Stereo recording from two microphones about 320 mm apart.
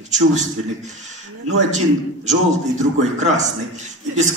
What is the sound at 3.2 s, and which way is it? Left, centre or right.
A man's voice, right.